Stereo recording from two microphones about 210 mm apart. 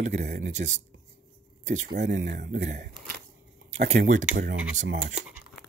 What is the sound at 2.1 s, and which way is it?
Speech, 55° right (ahead or behind).